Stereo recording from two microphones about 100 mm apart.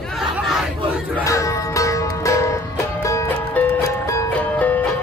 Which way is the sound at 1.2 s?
30° left (ahead or behind).